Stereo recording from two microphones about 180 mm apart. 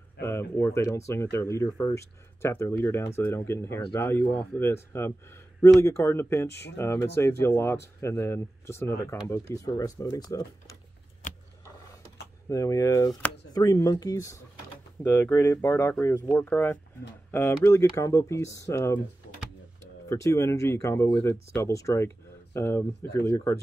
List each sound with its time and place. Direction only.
0.2 s speech: 15° left (ahead or behind)
11.2 s vehicle: 45° left (ahead or behind)
12.4 s speech: 20° left (ahead or behind)
20.1 s speech: 15° left (ahead or behind)